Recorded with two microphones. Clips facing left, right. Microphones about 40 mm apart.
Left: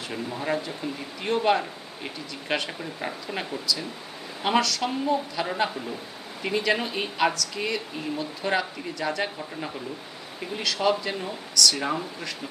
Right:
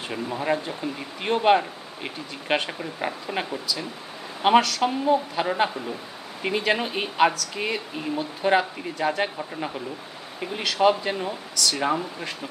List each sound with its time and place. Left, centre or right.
0.1 s speech: centre
4.4 s speech: right